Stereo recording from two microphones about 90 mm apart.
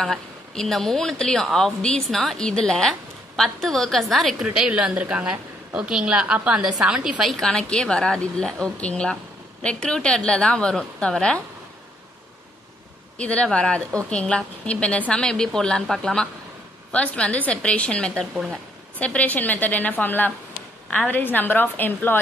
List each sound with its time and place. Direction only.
0.0 s speech: 5° left (ahead or behind)
4.4 s a woman's voice: 10° right (ahead or behind); by 11.4 s 10° left (ahead or behind)
13.2 s a woman's voice: 10° left (ahead or behind)